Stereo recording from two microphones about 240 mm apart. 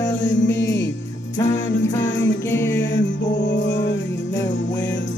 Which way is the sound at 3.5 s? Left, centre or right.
Left.